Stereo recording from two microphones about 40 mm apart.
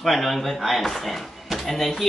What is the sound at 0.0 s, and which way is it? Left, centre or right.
Speech, centre.